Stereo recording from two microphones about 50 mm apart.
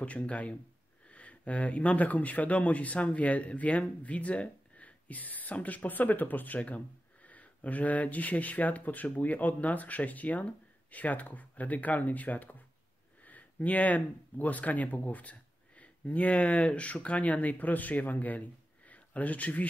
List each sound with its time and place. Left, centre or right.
0.0 s speech: left